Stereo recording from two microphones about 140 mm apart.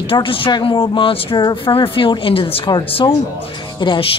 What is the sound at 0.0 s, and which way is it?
Speech, 40° left (ahead or behind).